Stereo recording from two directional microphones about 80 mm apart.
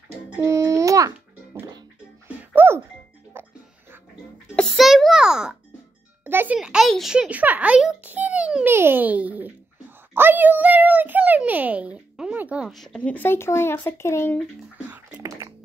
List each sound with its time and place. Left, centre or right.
0.4 s music: right
2.2 s music: right
4.7 s a sound: centre
6.2 s music: right
6.5 s speech: centre
7.2 s speech: centre
8.0 s a sound: centre
8.6 s a child's voice: right
12.4 s a sound: centre
12.6 s speech: centre
13.0 s speech: left